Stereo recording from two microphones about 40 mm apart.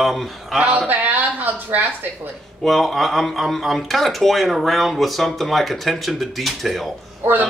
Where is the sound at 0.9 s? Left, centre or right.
Right.